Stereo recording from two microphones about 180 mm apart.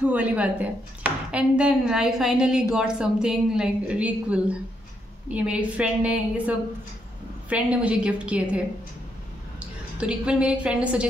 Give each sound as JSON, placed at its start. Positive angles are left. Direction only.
{"t": 0.0, "sound": "a woman's voice", "side_deg": -10}
{"t": 9.9, "sound": "a woman's voice", "side_deg": -5}